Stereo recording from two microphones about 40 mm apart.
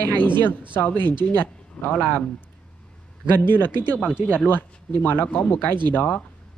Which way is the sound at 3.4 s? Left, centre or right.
Left.